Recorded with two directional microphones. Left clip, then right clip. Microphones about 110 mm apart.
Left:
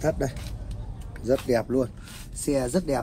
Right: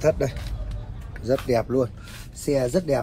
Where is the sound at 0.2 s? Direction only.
30° right (ahead or behind).